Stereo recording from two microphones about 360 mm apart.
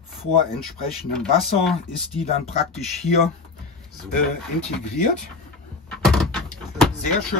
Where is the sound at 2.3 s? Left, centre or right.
Centre.